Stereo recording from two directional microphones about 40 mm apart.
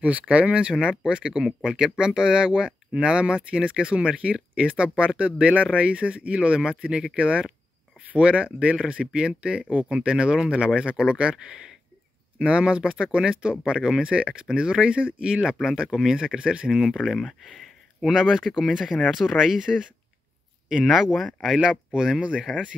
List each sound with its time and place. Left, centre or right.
0.3 s speech: right
17.2 s speech: centre
18.1 s speech: centre
20.8 s speech: centre
21.6 s speech: centre
22.5 s speech: left